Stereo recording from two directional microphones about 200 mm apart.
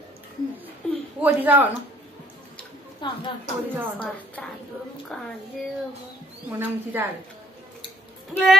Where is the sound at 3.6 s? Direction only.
10° right (ahead or behind).